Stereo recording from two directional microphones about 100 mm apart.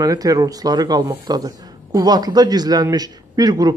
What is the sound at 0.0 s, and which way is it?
Speech, 40° right (ahead or behind).